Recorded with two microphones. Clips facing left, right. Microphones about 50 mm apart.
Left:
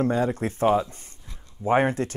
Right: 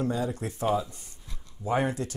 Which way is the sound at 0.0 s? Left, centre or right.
Left.